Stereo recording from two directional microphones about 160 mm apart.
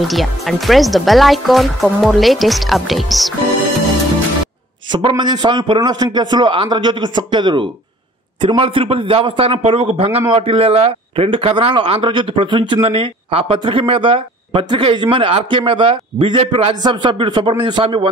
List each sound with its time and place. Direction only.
0.1 s speech: centre (ahead or behind)
4.9 s a man's voice: 30° right (ahead or behind)